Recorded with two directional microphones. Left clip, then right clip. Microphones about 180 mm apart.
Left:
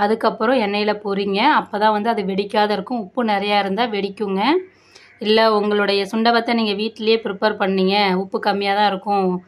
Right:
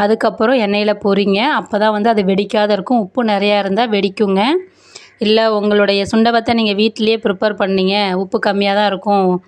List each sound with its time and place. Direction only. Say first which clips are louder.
0.0 s speech: right 4 dB; 40° right (ahead or behind)